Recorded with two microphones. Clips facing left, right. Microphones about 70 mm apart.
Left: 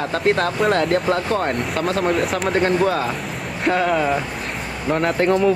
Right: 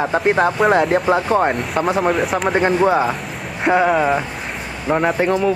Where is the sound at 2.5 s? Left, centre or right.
Centre.